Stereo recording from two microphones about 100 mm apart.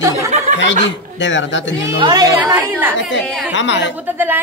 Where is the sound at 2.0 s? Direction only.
40° right (ahead or behind).